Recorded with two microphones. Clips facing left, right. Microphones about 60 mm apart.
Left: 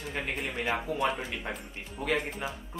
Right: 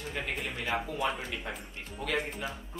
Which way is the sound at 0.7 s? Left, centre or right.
Centre.